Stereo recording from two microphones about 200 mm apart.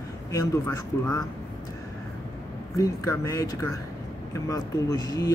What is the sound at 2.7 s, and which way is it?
Speech, 15° left (ahead or behind).